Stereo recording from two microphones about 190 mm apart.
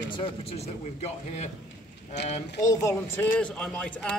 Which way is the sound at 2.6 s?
15° left (ahead or behind).